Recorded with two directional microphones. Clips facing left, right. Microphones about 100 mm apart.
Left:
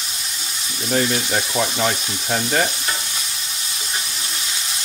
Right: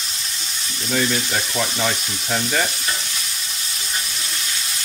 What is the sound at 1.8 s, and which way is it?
Speech, 45° left (ahead or behind).